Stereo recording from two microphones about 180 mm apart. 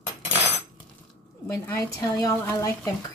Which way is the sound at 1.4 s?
15° left (ahead or behind).